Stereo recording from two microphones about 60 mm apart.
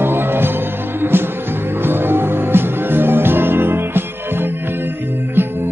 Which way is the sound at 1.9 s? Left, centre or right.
Right.